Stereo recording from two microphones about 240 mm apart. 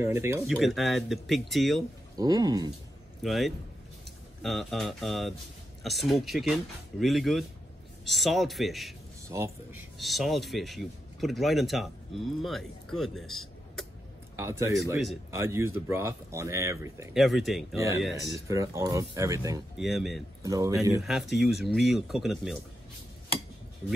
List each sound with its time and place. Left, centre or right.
0.0 s speech: centre
0.5 s speech: centre
2.1 s speech: centre
3.2 s a man's voice: centre
9.3 s speech: centre
9.9 s speech: centre
14.3 s speech: centre
17.1 s speech: centre
17.7 s speech: centre
19.8 s speech: centre
20.4 s speech: centre
21.0 s speech: centre